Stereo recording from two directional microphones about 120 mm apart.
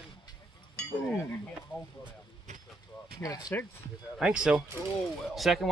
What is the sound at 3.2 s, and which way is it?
Speech, 30° left (ahead or behind).